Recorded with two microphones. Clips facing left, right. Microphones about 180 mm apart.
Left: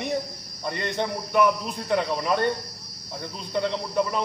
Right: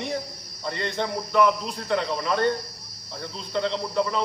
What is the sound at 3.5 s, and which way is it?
Speech, 15° left (ahead or behind).